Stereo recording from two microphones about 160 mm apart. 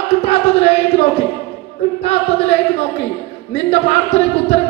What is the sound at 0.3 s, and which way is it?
Music, 40° left (ahead or behind).